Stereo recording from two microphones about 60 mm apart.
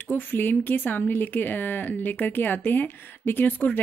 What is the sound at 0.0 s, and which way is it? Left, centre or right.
Speech, left.